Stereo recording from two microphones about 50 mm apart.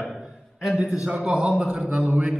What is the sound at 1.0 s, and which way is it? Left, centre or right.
Speech, centre.